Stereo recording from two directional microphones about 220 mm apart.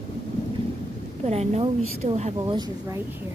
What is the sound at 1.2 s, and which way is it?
A woman's voice, 30° right (ahead or behind).